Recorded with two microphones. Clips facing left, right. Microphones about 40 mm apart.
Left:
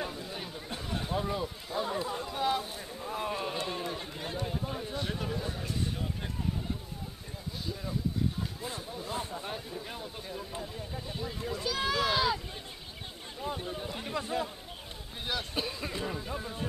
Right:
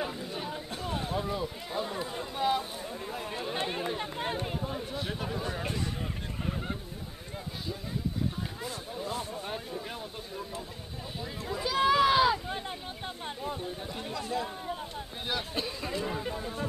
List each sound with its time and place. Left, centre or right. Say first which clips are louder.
0.0 s a sound: right 2 dB; centre
0.9 s speech: even; centre
3.5 s speech: right 3 dB; right
4.6 s speech: right 1 dB; centre
5.5 s speech: right 4 dB; right
9.1 s speech: left 2 dB; left
9.4 s speech: right 2 dB; centre
11.5 s a sound: right 7 dB; centre
13.4 s speech: left 3 dB; centre
14.1 s speech: even; left
15.5 s speech: even; centre
16.1 s speech: right 3 dB; centre